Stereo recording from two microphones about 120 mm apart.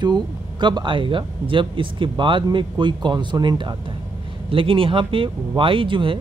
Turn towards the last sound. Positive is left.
turn(degrees=-45)  # may be behind; listen again after turning